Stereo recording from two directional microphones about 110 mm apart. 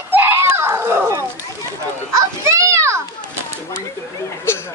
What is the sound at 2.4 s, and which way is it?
Children playing, 25° right (ahead or behind).